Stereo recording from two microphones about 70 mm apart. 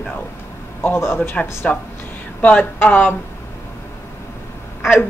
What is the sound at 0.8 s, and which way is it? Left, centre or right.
Speech, left.